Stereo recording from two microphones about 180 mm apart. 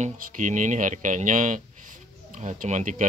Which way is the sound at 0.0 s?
45° right (ahead or behind).